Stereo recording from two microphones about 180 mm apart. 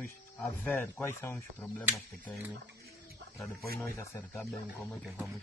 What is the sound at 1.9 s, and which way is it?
Speech, centre (ahead or behind).